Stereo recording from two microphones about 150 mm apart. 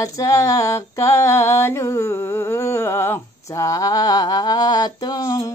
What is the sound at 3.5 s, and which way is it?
Mantra, 20° left (ahead or behind).